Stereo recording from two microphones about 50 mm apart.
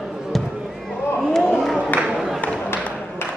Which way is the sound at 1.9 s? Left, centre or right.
Left.